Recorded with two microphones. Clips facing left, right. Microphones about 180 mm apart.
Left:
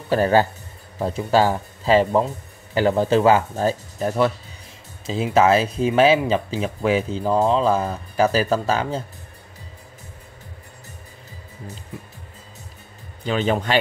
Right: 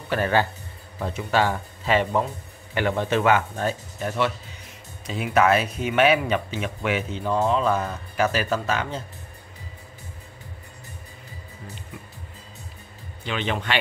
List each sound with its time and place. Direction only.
0.1 s speech: 35° left (ahead or behind)
13.2 s speech: 40° left (ahead or behind)